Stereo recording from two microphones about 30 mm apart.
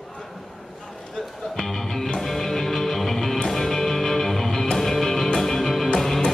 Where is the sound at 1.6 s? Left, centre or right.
Centre.